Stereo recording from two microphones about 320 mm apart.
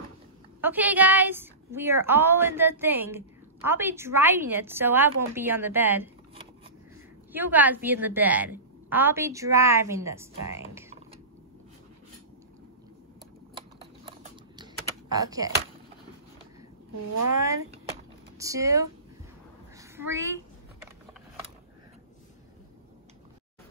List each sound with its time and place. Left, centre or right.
0.6 s a woman's voice: centre
7.3 s a woman's voice: centre
13.6 s typing: centre
15.1 s a woman's voice: centre
18.4 s a woman's voice: centre